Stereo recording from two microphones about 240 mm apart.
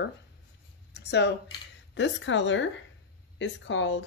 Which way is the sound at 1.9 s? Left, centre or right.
Left.